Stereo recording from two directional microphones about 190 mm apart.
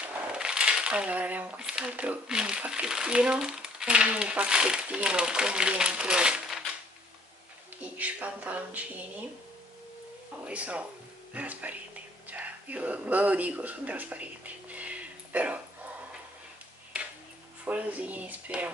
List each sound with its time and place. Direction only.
0.0 s speech: 5° right (ahead or behind)
7.8 s speech: 5° right (ahead or behind)
10.4 s speech: 5° right (ahead or behind)
17.6 s speech: 10° right (ahead or behind)